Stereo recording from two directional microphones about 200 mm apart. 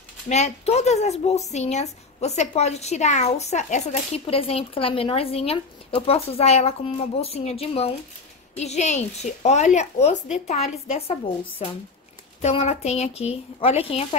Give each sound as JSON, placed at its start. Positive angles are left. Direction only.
{"t": 0.3, "sound": "a woman's voice", "side_deg": 35}